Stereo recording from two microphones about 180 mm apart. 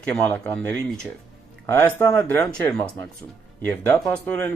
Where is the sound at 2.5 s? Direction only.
5° left (ahead or behind).